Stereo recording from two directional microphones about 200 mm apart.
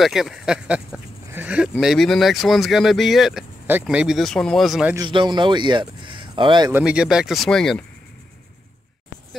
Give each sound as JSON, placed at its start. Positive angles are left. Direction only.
{"t": 0.0, "sound": "speech", "side_deg": 0}
{"t": 4.9, "sound": "speech", "side_deg": -20}
{"t": 6.7, "sound": "speech", "side_deg": -5}